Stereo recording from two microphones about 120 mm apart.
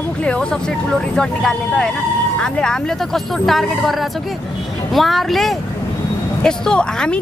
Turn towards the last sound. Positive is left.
turn(degrees=5)  # may be behind; listen again after turning